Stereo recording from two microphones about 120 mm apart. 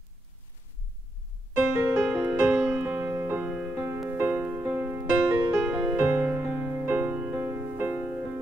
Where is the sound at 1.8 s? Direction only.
10° right (ahead or behind).